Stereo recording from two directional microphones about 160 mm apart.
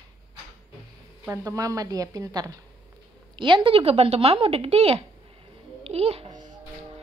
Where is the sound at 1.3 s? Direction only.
20° right (ahead or behind).